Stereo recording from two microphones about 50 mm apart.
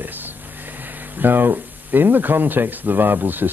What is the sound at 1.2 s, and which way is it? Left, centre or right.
Speech, right.